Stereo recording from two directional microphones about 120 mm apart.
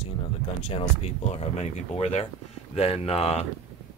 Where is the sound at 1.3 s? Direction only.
60° left (ahead or behind).